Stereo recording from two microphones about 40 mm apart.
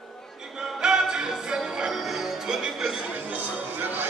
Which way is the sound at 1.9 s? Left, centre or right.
Centre.